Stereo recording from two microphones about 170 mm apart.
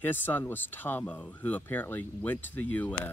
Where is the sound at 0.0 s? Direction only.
10° left (ahead or behind).